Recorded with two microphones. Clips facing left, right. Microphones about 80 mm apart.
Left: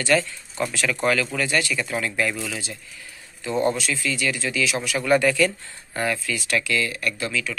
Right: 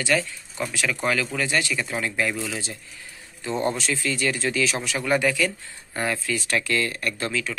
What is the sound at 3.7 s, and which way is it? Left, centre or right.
Speech, right.